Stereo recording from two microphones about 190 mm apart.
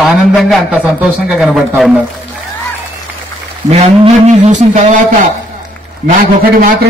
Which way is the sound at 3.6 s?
35° right (ahead or behind).